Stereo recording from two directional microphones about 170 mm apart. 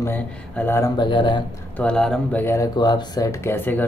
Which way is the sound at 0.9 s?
30° left (ahead or behind).